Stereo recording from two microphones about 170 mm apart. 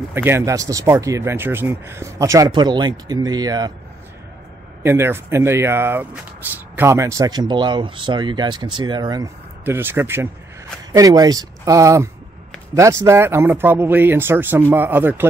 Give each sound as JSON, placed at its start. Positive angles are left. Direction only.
{"t": 0.1, "sound": "speech", "side_deg": -15}
{"t": 4.8, "sound": "speech", "side_deg": -15}